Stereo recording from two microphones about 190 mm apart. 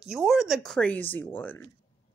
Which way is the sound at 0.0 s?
5° right (ahead or behind).